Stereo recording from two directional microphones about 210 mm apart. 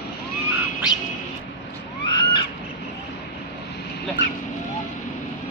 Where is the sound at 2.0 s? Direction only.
20° left (ahead or behind).